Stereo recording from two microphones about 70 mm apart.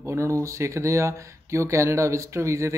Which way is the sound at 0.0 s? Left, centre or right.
Right.